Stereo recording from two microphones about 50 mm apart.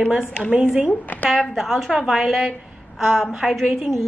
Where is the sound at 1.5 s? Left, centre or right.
Centre.